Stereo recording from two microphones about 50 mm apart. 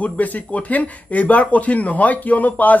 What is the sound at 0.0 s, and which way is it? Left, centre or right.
Speech, left.